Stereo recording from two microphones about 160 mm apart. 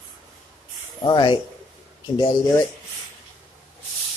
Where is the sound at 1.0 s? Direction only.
30° left (ahead or behind).